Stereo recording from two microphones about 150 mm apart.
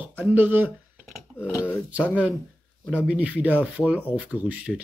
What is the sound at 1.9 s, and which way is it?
Speech, 10° right (ahead or behind).